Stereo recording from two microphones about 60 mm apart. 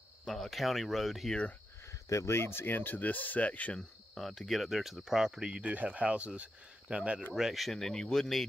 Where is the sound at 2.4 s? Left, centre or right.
Left.